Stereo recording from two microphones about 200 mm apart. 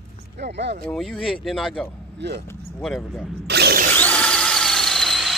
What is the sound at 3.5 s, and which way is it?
Ratchet, 55° right (ahead or behind).